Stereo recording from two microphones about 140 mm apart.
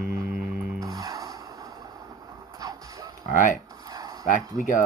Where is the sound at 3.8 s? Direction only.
25° right (ahead or behind).